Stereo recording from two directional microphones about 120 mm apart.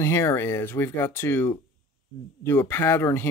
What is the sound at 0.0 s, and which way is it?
Speech, 20° left (ahead or behind).